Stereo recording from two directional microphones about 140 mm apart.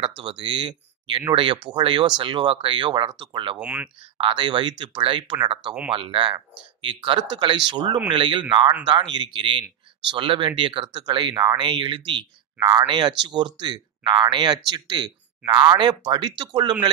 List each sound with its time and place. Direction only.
0.0 s speech: 40° right (ahead or behind)
3.5 s speech: 10° right (ahead or behind)
4.2 s speech: 35° right (ahead or behind)